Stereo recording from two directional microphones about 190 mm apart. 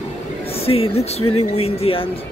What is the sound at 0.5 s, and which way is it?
Speech, 30° left (ahead or behind).